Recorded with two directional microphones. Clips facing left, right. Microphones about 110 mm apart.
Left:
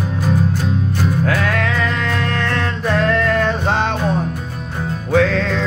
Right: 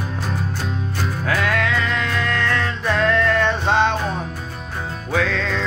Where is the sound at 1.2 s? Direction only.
45° left (ahead or behind).